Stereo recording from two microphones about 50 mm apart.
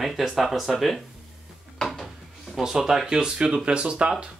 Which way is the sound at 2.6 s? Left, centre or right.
Centre.